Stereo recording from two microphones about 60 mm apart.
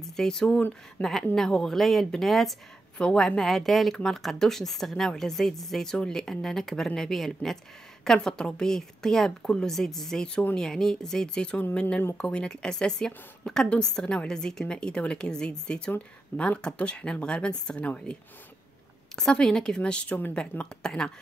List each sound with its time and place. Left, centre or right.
0.1 s a woman's voice: centre
0.6 s speech: left
1.0 s speech: centre
3.0 s a woman's voice: centre
19.1 s a woman's voice: centre